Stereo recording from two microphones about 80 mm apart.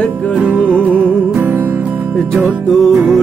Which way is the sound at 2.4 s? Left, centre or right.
Centre.